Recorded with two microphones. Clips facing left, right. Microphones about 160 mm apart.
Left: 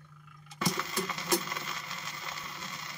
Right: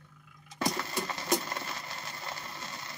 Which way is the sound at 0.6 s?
35° right (ahead or behind).